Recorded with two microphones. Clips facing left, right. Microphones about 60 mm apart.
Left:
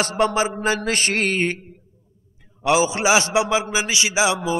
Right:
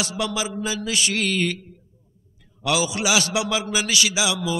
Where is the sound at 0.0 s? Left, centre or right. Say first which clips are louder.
Left 7 dB; left.